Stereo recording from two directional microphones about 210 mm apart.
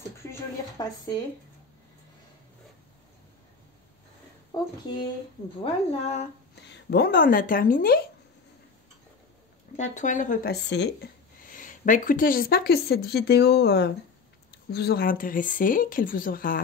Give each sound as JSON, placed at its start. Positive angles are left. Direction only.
{"t": 0.2, "sound": "a sound", "side_deg": 15}
{"t": 4.5, "sound": "a woman's voice", "side_deg": 20}
{"t": 6.9, "sound": "speech", "side_deg": 45}
{"t": 9.8, "sound": "a woman's voice", "side_deg": 35}
{"t": 11.5, "sound": "a woman's voice", "side_deg": 40}